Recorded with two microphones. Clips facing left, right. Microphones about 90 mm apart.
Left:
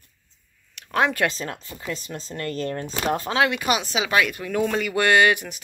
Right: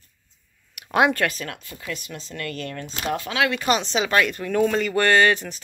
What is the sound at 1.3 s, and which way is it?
Speech, 30° left (ahead or behind).